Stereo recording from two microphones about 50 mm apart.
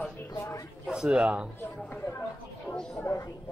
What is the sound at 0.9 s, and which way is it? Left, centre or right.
Speech, centre.